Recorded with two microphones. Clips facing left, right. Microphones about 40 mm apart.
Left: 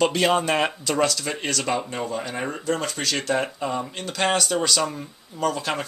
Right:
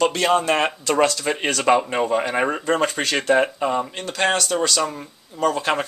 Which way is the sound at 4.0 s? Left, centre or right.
Centre.